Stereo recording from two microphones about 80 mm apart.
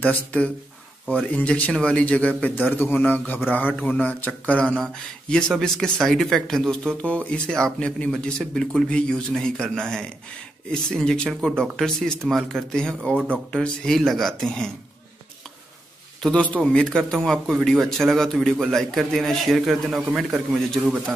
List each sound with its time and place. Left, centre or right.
0.0 s a man's voice: centre
16.2 s a man's voice: centre